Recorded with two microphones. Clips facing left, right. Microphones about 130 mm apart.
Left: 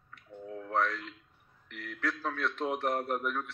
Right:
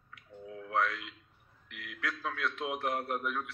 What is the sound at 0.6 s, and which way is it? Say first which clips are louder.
A man's voice: left 1 dB; 40° left (ahead or behind).